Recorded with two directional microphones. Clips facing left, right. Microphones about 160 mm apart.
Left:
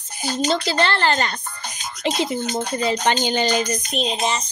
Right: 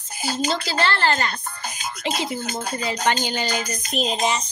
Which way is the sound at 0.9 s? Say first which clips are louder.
Left 1 dB; 15° left (ahead or behind).